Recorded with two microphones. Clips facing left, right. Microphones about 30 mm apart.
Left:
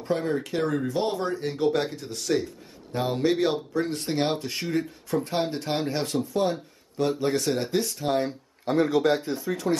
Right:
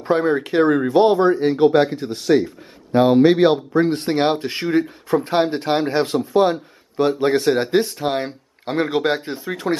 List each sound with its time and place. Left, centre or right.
0.0 s speech: right